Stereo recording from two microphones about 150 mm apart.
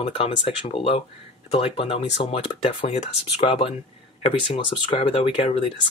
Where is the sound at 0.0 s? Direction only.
40° left (ahead or behind).